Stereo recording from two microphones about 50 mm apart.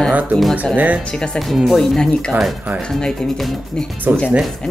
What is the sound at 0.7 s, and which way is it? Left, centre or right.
Speech, right.